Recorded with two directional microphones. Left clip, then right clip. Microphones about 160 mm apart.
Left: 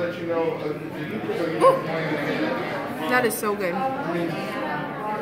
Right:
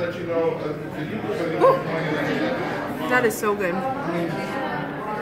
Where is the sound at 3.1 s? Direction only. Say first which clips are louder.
Right 2 dB; centre (ahead or behind).